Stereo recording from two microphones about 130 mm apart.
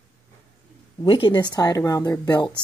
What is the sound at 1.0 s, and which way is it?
Speech, 40° left (ahead or behind).